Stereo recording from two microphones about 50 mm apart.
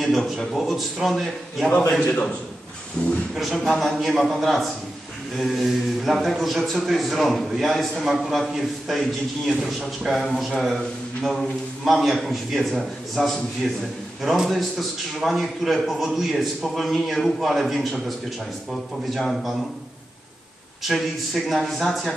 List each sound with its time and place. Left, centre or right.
0.6 s a man's voice: centre
2.0 s a man's voice: centre
3.3 s a man's voice: centre
20.8 s a man's voice: centre